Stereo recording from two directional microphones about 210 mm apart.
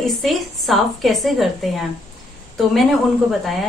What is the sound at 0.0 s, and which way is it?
A woman's voice, centre (ahead or behind).